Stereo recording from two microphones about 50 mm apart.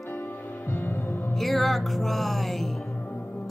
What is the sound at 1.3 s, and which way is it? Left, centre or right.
Speech, centre.